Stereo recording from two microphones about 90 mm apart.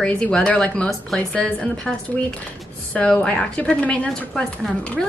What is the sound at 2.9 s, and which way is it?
A woman's voice, 10° left (ahead or behind).